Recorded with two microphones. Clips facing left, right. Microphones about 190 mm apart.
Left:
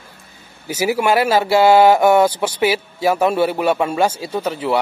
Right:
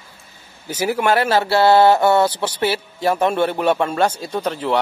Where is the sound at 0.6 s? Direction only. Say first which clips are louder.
Left 1 dB; 10° left (ahead or behind).